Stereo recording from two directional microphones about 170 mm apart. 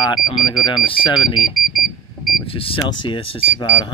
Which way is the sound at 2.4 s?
35° left (ahead or behind).